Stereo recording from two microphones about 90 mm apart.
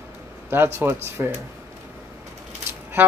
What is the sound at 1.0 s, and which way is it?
Speech, 25° right (ahead or behind).